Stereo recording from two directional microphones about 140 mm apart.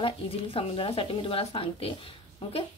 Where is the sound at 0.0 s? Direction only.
40° left (ahead or behind).